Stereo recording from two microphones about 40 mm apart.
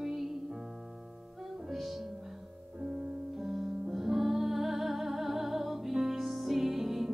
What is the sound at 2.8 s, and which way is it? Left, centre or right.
Music, right.